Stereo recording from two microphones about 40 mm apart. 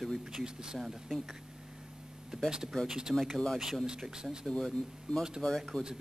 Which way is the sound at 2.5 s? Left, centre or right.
Centre.